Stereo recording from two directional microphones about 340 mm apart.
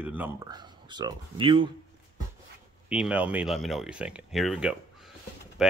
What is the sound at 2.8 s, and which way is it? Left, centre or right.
Speech, centre.